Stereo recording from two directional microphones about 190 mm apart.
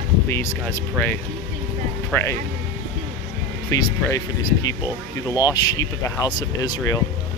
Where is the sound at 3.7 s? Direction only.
15° left (ahead or behind).